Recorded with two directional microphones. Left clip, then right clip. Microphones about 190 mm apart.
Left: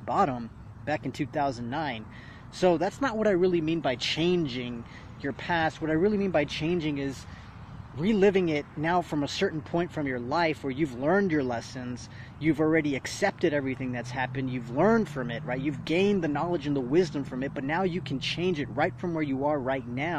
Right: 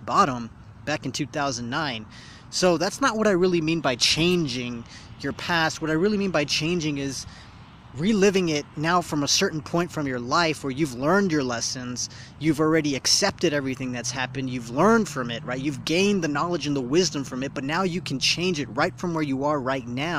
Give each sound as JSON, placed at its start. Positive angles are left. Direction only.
{"t": 0.0, "sound": "speech", "side_deg": -30}
{"t": 1.8, "sound": "speech", "side_deg": -35}